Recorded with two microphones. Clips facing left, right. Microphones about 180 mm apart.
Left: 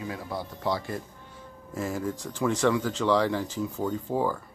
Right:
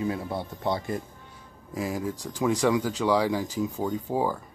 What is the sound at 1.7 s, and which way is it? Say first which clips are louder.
Speech: right 1 dB; 10° right (ahead or behind).